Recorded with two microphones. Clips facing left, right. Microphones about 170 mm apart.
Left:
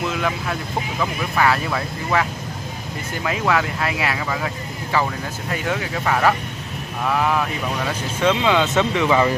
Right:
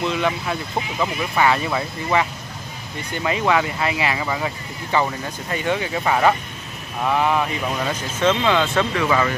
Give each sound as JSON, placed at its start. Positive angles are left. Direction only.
{"t": 0.0, "sound": "speech", "side_deg": 0}
{"t": 3.3, "sound": "speech", "side_deg": 0}
{"t": 8.2, "sound": "speech", "side_deg": 10}